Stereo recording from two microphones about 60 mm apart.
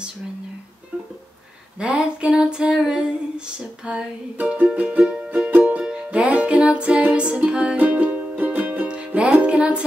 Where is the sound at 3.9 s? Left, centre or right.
Right.